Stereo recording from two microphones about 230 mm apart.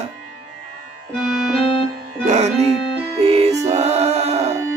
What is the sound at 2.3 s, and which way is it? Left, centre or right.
Music, right.